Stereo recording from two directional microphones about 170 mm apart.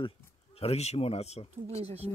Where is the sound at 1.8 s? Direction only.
35° right (ahead or behind).